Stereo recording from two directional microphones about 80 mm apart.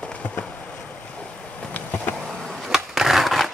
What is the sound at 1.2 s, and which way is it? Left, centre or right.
Vehicle, centre.